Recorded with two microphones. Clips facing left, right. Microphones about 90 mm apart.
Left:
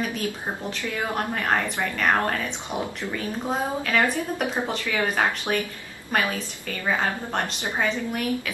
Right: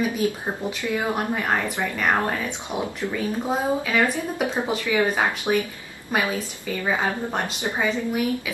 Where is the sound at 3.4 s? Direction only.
10° right (ahead or behind).